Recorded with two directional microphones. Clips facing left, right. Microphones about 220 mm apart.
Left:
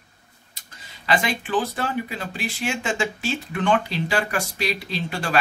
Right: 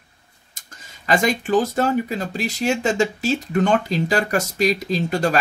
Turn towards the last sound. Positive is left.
turn(degrees=-40)  # may be behind; listen again after turning